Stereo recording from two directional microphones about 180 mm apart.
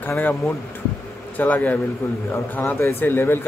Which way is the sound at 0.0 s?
10° left (ahead or behind).